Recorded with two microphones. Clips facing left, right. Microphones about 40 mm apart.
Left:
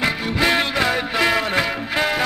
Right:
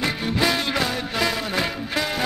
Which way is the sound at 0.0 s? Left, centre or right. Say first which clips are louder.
Left 3 dB; left.